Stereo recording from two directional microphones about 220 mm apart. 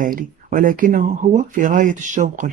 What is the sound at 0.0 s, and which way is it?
Speech, 40° right (ahead or behind).